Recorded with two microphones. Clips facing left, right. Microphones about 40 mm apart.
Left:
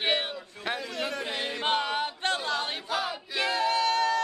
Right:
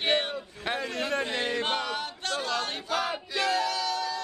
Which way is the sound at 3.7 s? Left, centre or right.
Left.